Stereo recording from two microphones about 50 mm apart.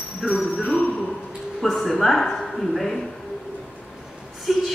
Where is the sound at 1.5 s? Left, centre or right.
Centre.